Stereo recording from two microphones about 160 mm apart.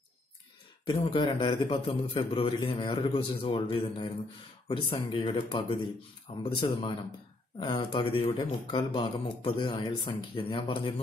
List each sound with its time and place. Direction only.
0.8 s speech: 30° left (ahead or behind)